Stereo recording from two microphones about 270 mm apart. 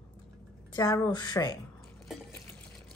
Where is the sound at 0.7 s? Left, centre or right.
Centre.